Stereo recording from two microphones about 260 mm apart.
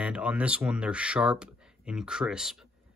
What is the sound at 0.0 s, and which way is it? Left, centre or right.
Speech, centre.